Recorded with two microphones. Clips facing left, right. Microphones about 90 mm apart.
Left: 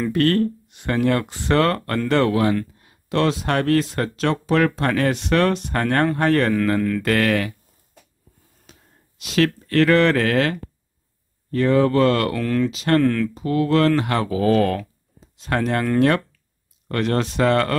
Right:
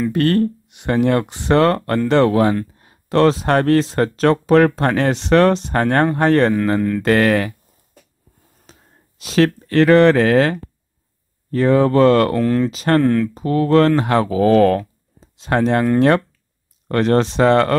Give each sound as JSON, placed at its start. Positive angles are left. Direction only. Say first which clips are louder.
{"t": 0.1, "sound": "speech", "louder": "right 2 dB", "side_deg": -15}
{"t": 2.3, "sound": "speech", "louder": "right 4 dB", "side_deg": -30}
{"t": 8.7, "sound": "a sound", "louder": "right 2 dB", "side_deg": -35}
{"t": 9.2, "sound": "speech", "louder": "right 4 dB", "side_deg": -30}
{"t": 9.7, "sound": "speech", "louder": "right 5 dB", "side_deg": -20}
{"t": 13.0, "sound": "speech", "louder": "right 3 dB", "side_deg": -20}
{"t": 13.3, "sound": "speech", "louder": "right 4 dB", "side_deg": -40}